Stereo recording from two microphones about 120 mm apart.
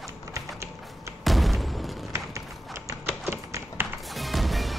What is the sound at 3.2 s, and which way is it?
Tap, 20° right (ahead or behind).